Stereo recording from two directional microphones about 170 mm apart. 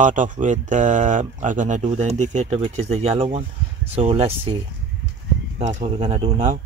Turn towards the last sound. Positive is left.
turn(degrees=-30)  # may be behind; listen again after turning